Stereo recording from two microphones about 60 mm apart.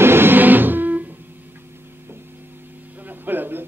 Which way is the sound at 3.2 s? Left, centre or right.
Right.